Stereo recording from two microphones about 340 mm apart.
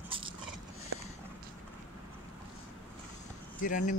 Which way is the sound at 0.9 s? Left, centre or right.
Right.